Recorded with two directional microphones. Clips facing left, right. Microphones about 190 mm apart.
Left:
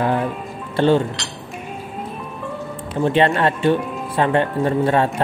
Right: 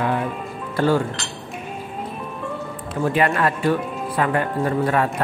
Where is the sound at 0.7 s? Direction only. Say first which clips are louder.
Left 3 dB; 25° left (ahead or behind).